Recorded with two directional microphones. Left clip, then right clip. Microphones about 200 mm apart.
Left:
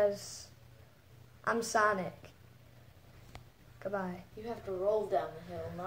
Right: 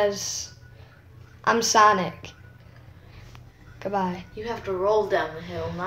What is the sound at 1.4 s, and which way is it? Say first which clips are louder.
Speech: right 12 dB; 10° right (ahead or behind).